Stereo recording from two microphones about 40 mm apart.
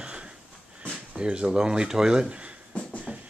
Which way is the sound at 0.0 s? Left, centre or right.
Right.